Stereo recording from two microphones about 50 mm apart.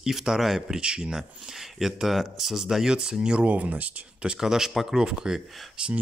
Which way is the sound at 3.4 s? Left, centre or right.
Right.